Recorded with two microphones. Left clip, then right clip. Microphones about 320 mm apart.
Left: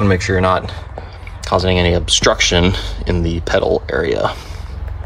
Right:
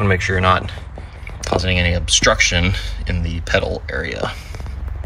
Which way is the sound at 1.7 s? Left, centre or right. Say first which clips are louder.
Left 3 dB; left.